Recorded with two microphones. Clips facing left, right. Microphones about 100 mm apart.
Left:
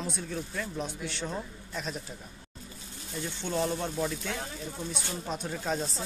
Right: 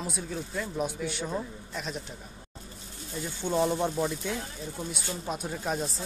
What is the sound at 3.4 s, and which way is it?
Speech, 15° right (ahead or behind).